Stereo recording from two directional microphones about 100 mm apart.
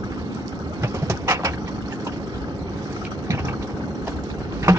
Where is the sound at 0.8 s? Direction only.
30° right (ahead or behind).